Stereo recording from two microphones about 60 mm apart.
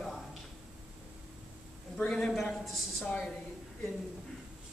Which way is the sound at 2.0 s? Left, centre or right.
Centre.